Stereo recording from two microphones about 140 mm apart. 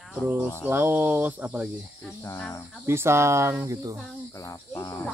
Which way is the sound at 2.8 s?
20° right (ahead or behind).